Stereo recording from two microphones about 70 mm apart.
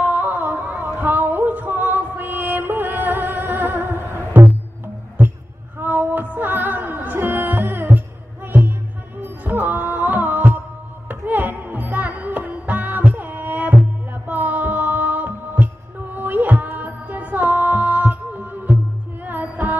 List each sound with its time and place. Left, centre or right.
0.1 s music: right